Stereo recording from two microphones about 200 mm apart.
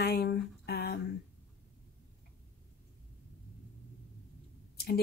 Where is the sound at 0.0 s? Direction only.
55° left (ahead or behind).